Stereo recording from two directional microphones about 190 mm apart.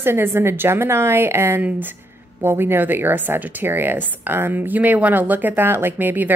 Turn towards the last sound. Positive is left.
turn(degrees=-10)  # may be behind; listen again after turning